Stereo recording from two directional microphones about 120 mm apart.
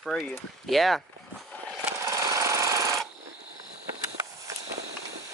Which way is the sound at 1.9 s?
25° right (ahead or behind).